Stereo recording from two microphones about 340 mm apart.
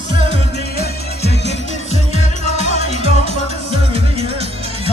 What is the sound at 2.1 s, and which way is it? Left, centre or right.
Music, centre.